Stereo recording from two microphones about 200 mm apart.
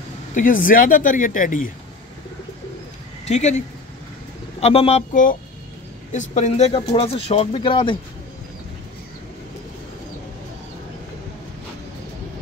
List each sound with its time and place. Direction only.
0.3 s speech: 40° left (ahead or behind)
3.3 s speech: 35° left (ahead or behind)